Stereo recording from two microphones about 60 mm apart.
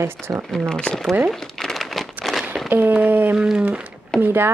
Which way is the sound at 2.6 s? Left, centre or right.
Right.